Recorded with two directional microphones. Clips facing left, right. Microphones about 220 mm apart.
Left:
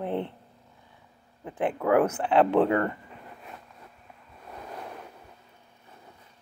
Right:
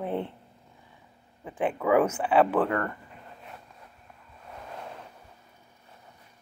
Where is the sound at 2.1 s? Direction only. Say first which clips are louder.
Even; 10° right (ahead or behind).